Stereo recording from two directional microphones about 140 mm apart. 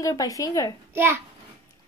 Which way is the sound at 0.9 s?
15° right (ahead or behind).